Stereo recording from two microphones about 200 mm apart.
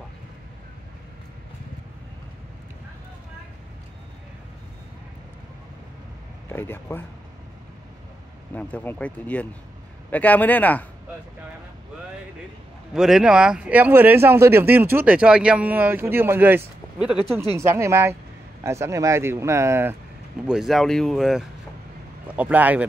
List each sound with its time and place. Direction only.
6.5 s speech: 10° left (ahead or behind)
8.5 s speech: 5° left (ahead or behind)
12.9 s speech: 5° right (ahead or behind)
17.6 s speech: 15° right (ahead or behind)
20.4 s speech: centre (ahead or behind)